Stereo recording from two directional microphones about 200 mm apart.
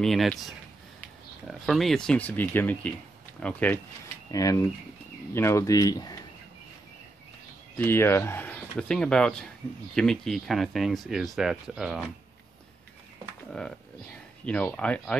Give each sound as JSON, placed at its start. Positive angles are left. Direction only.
{"t": 0.0, "sound": "speech", "side_deg": 0}
{"t": 7.7, "sound": "speech", "side_deg": 10}
{"t": 13.5, "sound": "speech", "side_deg": 0}